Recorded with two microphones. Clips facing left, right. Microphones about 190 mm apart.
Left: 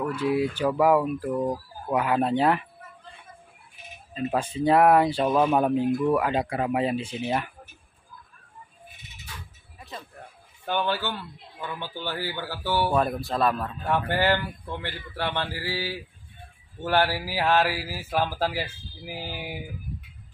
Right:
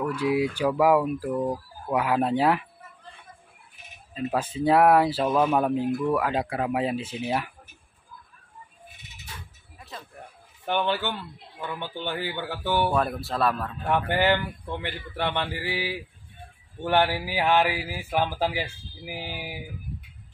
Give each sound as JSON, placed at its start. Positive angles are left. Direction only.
{"t": 0.1, "sound": "speech", "side_deg": -10}
{"t": 4.1, "sound": "speech", "side_deg": -5}
{"t": 9.8, "sound": "a sound", "side_deg": 0}
{"t": 10.9, "sound": "speech", "side_deg": -20}
{"t": 13.3, "sound": "speech", "side_deg": 0}
{"t": 13.8, "sound": "speech", "side_deg": -15}